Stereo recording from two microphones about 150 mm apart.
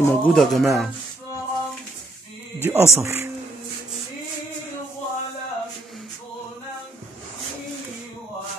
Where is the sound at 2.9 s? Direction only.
15° right (ahead or behind).